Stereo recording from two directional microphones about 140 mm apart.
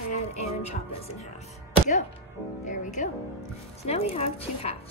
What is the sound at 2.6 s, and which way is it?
Speech, 65° left (ahead or behind).